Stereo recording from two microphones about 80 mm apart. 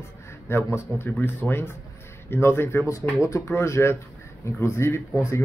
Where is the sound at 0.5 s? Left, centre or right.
Left.